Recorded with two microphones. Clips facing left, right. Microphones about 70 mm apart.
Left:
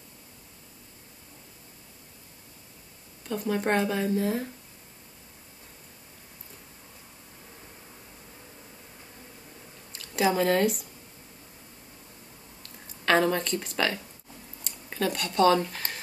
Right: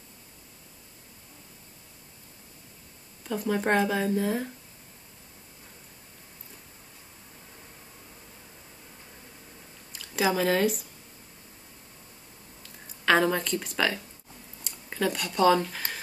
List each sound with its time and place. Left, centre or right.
3.3 s speech: centre
9.9 s speech: centre
13.0 s speech: centre